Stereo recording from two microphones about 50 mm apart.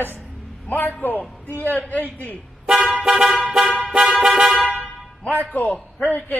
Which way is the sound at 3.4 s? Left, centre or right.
Centre.